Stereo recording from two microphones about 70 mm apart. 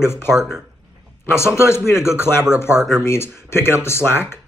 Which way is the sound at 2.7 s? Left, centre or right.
Centre.